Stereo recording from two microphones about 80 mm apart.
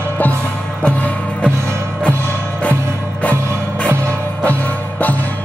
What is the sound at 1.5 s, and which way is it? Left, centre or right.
Music, right.